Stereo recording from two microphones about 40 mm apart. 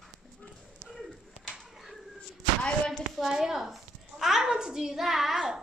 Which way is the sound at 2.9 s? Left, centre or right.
Centre.